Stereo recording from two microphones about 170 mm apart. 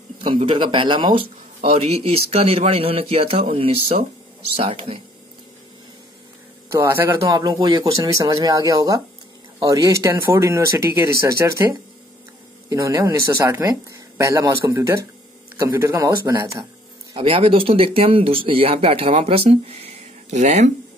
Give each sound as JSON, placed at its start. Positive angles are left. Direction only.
{"t": 0.5, "sound": "speech", "side_deg": -30}
{"t": 6.7, "sound": "speech", "side_deg": -15}
{"t": 17.1, "sound": "speech", "side_deg": -35}